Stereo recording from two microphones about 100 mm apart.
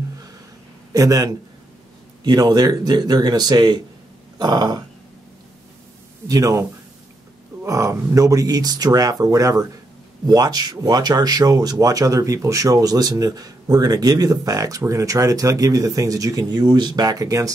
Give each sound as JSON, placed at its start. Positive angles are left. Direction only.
{"t": 0.9, "sound": "speech", "side_deg": -35}
{"t": 6.2, "sound": "speech", "side_deg": -35}
{"t": 7.6, "sound": "speech", "side_deg": -30}